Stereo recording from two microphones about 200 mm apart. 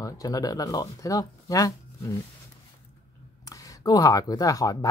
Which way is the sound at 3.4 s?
15° left (ahead or behind).